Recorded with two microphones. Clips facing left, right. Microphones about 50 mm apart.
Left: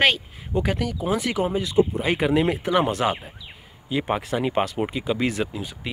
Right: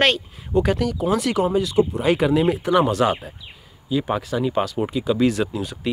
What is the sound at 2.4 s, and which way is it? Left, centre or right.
Speech, left.